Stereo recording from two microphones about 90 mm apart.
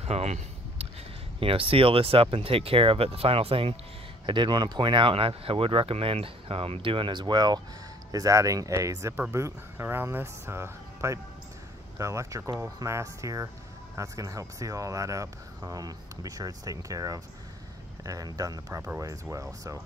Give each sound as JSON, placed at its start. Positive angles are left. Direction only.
{"t": 1.4, "sound": "speech", "side_deg": -90}
{"t": 4.3, "sound": "speech", "side_deg": -60}
{"t": 8.1, "sound": "speech", "side_deg": -40}
{"t": 9.3, "sound": "speech", "side_deg": -25}
{"t": 18.7, "sound": "speech", "side_deg": -30}